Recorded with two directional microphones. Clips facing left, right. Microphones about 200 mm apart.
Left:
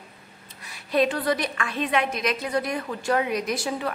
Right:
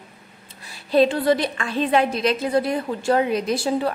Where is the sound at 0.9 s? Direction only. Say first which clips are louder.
Right 5 dB; 30° right (ahead or behind).